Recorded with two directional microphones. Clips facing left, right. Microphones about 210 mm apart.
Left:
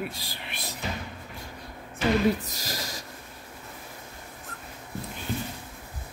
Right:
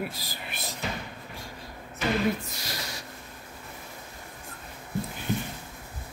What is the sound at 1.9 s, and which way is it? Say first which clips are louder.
Speech: left 3 dB; 40° left (ahead or behind).